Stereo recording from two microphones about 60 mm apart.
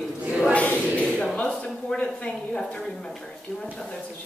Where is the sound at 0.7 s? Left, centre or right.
Centre.